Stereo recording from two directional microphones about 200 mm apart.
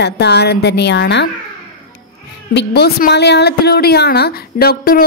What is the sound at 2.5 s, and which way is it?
Speech, 55° left (ahead or behind).